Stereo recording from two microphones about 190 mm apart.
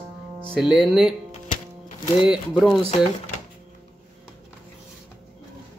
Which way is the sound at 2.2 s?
5° right (ahead or behind).